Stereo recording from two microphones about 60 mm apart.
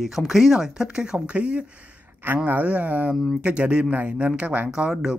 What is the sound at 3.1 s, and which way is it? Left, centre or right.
Speech, centre.